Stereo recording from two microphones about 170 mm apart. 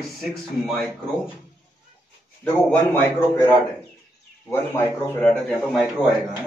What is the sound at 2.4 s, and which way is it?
A man's voice, 10° left (ahead or behind).